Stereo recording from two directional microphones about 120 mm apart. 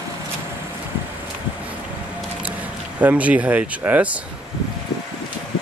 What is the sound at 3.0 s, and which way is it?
Speech, 10° right (ahead or behind).